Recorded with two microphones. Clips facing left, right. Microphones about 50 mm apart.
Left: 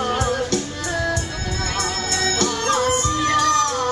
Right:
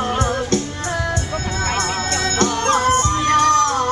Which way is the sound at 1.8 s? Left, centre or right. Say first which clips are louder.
Right 3 dB; right.